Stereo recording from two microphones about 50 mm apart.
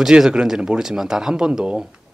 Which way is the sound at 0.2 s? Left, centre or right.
Centre.